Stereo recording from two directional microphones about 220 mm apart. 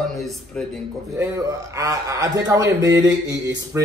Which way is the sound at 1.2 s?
15° right (ahead or behind).